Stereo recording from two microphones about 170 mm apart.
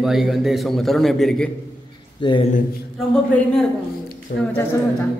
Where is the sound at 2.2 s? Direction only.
30° left (ahead or behind).